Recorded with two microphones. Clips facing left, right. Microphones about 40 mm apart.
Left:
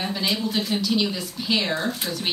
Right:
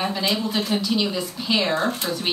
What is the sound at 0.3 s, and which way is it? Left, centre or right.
A woman's voice, centre.